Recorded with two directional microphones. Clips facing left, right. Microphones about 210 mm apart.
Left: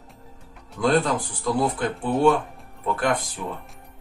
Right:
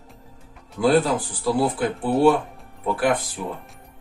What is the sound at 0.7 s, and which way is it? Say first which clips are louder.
Speech: right 3 dB; 5° right (ahead or behind).